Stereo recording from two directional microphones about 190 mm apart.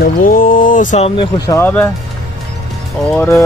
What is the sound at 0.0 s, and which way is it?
Speech, 50° left (ahead or behind).